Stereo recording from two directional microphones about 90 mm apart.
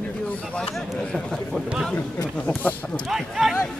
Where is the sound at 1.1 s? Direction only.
5° left (ahead or behind).